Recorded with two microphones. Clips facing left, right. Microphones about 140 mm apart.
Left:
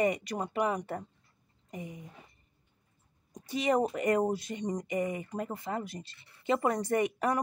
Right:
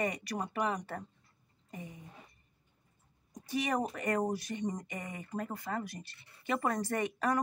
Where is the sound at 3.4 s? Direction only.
20° left (ahead or behind).